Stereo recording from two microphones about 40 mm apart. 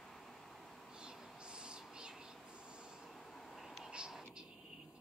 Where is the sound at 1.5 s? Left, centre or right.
Right.